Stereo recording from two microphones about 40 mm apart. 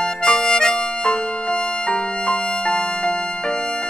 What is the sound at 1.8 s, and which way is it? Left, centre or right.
Music, left.